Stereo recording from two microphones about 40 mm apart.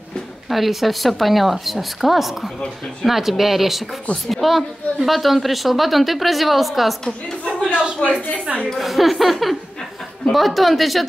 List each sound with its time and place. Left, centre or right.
0.5 s speech: centre
7.7 s a woman's voice: right
8.7 s speech: centre